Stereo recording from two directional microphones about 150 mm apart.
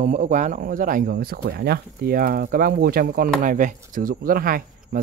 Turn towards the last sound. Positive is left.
turn(degrees=-70)  # may be behind; listen again after turning